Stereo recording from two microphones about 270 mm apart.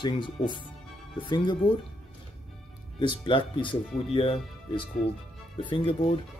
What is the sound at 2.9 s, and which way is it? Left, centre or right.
Speech, centre.